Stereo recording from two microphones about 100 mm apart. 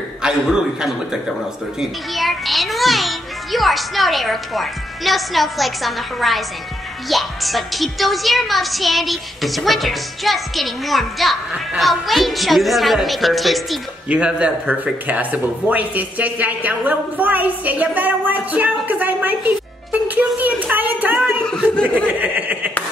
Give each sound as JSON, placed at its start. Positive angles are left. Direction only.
{"t": 0.2, "sound": "a child's voice", "side_deg": -5}
{"t": 14.0, "sound": "speech", "side_deg": -10}
{"t": 22.2, "sound": "chuckle", "side_deg": -15}